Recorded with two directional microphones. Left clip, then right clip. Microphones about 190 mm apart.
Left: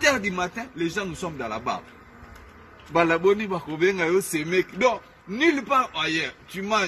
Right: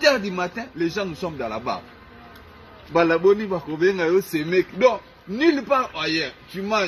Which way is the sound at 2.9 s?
15° left (ahead or behind).